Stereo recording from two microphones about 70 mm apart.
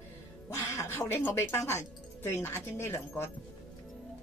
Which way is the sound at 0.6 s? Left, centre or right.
Left.